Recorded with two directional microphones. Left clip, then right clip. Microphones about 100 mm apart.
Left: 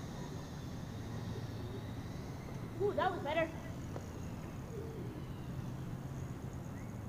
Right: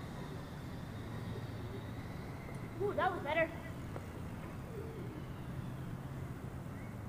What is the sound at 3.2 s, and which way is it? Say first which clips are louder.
Speech: right 1 dB; 25° left (ahead or behind).